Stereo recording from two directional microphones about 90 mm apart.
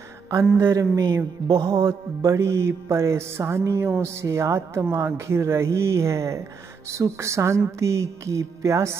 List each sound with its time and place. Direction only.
0.6 s mantra: 30° right (ahead or behind)
1.6 s mantra: 30° right (ahead or behind)